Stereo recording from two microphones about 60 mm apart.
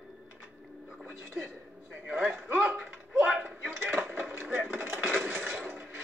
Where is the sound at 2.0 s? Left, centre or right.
Centre.